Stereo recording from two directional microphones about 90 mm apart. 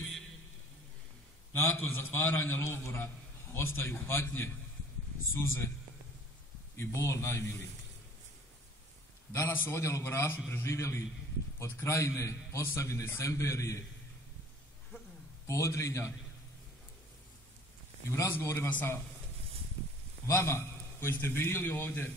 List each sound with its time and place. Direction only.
1.5 s a man's voice: 25° left (ahead or behind)
6.8 s a man's voice: 30° left (ahead or behind)
9.3 s a man's voice: 30° left (ahead or behind)
15.4 s a man's voice: 35° left (ahead or behind)
18.3 s a man's voice: 30° left (ahead or behind)
20.2 s a man's voice: 30° left (ahead or behind)